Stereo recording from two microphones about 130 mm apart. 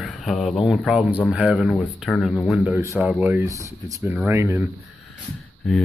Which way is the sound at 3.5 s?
25° right (ahead or behind).